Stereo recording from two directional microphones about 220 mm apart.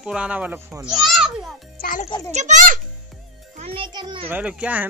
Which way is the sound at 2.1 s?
15° left (ahead or behind).